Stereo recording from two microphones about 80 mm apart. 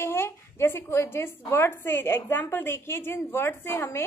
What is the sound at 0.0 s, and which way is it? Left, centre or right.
A woman's voice, left.